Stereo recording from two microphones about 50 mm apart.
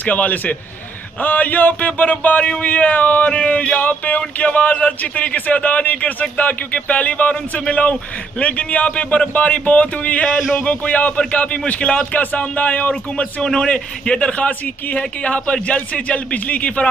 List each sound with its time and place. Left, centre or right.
0.0 s a man's voice: left